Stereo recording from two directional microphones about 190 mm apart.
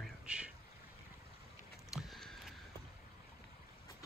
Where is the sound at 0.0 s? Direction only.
5° right (ahead or behind).